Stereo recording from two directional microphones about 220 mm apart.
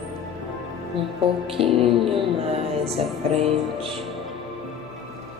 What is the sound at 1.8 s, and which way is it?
Music, 25° right (ahead or behind).